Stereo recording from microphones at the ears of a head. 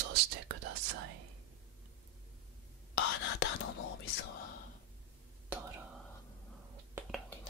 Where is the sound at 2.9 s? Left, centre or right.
Left.